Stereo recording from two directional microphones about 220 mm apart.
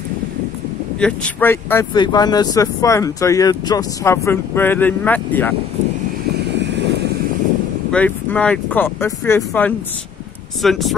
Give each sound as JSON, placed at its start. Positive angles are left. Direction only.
{"t": 0.9, "sound": "speech", "side_deg": 5}
{"t": 7.9, "sound": "speech", "side_deg": 5}